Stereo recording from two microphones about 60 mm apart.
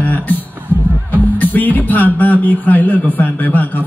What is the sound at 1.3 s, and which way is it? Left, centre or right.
A man's voice, left.